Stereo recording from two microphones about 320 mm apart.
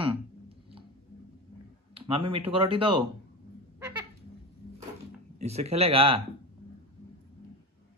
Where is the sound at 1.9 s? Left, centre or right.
Centre.